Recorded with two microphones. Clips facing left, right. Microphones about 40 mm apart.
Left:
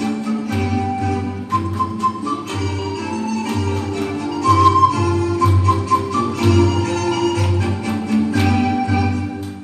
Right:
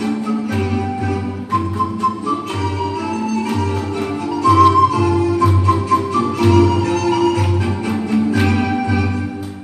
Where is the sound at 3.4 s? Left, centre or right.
Centre.